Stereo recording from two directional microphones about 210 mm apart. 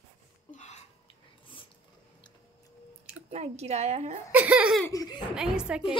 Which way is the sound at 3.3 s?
30° right (ahead or behind).